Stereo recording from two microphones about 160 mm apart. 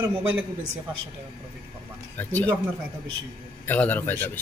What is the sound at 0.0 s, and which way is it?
Speech, 10° right (ahead or behind).